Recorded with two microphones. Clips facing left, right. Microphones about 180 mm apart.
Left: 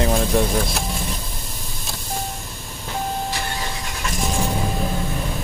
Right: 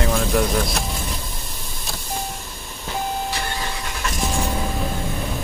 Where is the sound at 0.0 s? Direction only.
25° left (ahead or behind).